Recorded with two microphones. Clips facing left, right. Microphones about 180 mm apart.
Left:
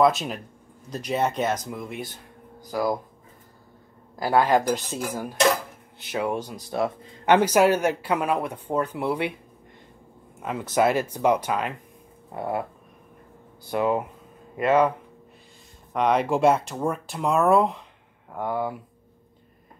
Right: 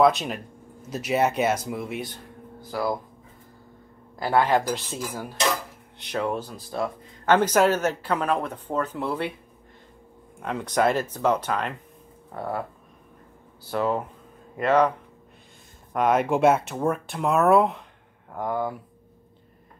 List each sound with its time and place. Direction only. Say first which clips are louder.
0.0 s speech: right 1 dB; centre (ahead or behind)
2.6 s speech: left 2 dB; 15° left (ahead or behind)
4.2 s speech: left 1 dB; 10° left (ahead or behind)
5.9 s speech: even; 5° left (ahead or behind)
10.4 s speech: left 1 dB; 5° left (ahead or behind)
13.7 s speech: left 2 dB; 10° left (ahead or behind)
15.9 s speech: even; 5° right (ahead or behind)